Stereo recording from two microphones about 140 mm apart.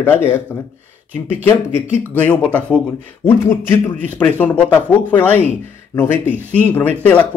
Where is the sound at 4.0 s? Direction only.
10° left (ahead or behind).